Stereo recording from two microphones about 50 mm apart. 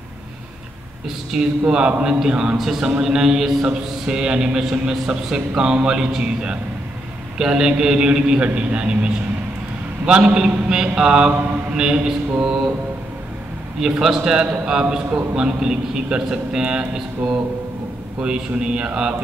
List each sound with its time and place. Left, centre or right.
1.0 s a man's voice: centre
2.5 s a man's voice: centre
13.7 s a man's voice: centre